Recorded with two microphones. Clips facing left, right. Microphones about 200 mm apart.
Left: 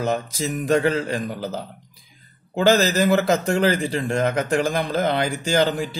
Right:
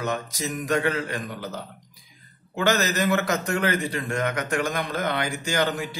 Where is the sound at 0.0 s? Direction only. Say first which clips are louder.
Left 5 dB; 30° left (ahead or behind).